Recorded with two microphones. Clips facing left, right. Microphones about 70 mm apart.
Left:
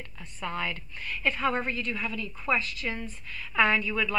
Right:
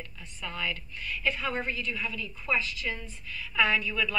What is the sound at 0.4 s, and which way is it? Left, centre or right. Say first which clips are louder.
A woman's voice: left 2 dB; left.